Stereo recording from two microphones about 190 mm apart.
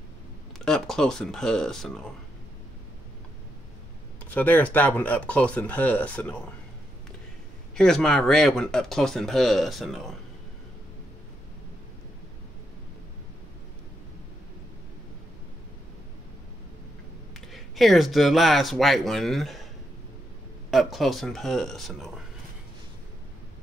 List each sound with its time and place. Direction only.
0.7 s speech: 5° left (ahead or behind)
4.3 s speech: 10° left (ahead or behind)
7.7 s speech: 5° left (ahead or behind)
17.5 s speech: centre (ahead or behind)
20.7 s speech: centre (ahead or behind)